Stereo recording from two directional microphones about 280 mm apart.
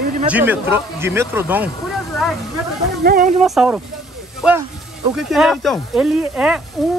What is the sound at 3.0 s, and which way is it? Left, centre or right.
Speech, right.